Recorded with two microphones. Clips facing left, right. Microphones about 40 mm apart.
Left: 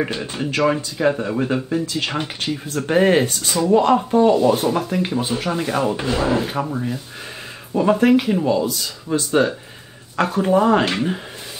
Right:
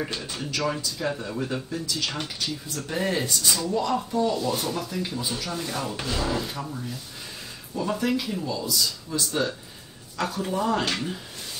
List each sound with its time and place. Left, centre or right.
0.1 s speech: left
3.4 s speech: left
3.7 s speech: left